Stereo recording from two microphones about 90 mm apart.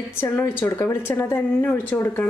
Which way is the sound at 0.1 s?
25° left (ahead or behind).